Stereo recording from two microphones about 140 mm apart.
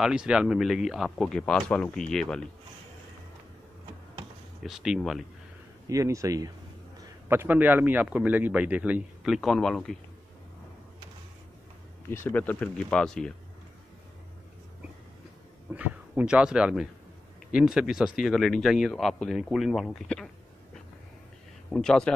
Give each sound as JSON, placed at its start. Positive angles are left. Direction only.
{"t": 0.0, "sound": "speech", "side_deg": -5}
{"t": 4.6, "sound": "speech", "side_deg": -5}
{"t": 5.9, "sound": "speech", "side_deg": -25}
{"t": 7.2, "sound": "a man's voice", "side_deg": -15}
{"t": 12.1, "sound": "speech", "side_deg": 15}
{"t": 15.7, "sound": "a man's voice", "side_deg": -10}
{"t": 21.6, "sound": "speech", "side_deg": 5}